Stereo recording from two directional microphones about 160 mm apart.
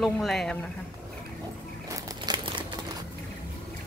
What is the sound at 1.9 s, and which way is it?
Crumpling, 25° right (ahead or behind).